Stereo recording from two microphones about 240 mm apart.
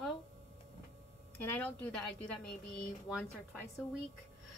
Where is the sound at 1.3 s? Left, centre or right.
Centre.